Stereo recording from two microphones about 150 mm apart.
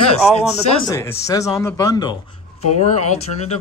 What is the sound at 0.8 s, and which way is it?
Speech, 20° left (ahead or behind).